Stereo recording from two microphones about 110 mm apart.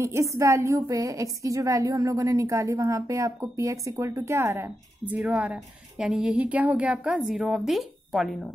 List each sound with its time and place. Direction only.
0.0 s a woman's voice: 25° right (ahead or behind); by 8.5 s centre (ahead or behind)